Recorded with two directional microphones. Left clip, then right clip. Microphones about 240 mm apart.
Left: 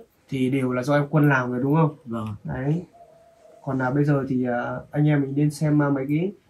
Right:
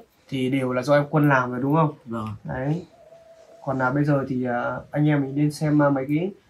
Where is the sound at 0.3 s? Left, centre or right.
Centre.